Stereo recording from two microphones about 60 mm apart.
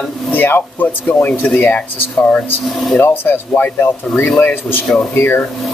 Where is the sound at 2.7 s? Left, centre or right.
Centre.